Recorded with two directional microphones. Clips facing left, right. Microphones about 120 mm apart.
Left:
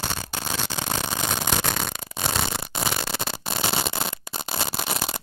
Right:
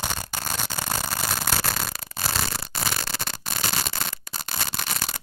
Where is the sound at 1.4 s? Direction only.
5° right (ahead or behind).